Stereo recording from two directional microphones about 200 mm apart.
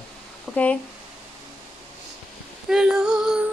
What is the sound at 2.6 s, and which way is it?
Speech, 5° right (ahead or behind).